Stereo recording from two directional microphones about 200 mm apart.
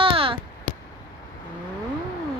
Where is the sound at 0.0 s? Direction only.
25° right (ahead or behind).